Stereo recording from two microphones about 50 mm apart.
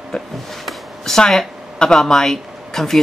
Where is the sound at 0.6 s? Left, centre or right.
Centre.